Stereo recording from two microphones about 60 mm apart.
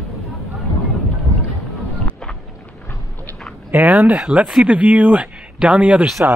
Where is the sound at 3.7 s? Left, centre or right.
Right.